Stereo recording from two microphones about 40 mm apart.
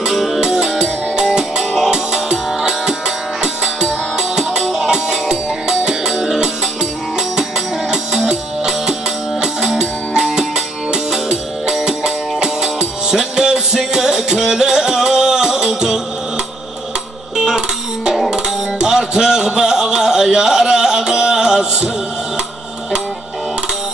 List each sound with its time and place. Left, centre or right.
0.4 s music: centre
17.5 s music: centre